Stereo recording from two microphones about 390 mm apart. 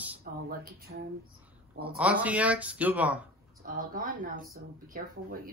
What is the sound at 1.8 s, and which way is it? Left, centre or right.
Speech, centre.